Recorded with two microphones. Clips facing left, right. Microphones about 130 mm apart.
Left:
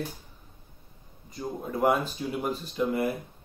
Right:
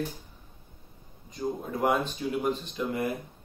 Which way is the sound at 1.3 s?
5° left (ahead or behind).